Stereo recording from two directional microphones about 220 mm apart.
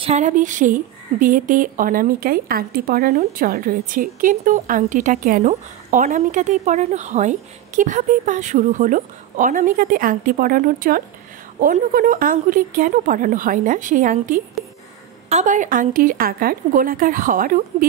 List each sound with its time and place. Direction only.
0.0 s speech: 30° right (ahead or behind)